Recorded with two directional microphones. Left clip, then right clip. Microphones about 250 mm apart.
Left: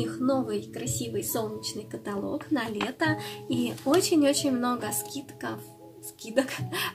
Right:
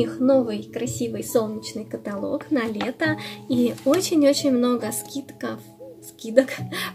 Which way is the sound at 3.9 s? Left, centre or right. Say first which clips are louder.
Right 2 dB; centre.